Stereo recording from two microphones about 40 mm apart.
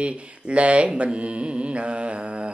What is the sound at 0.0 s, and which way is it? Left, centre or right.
Mantra, right.